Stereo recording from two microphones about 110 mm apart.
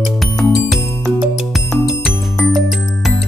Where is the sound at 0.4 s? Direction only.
Centre (ahead or behind).